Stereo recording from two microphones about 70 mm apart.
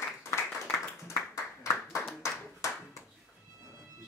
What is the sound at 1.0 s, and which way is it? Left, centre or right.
Clapping, left.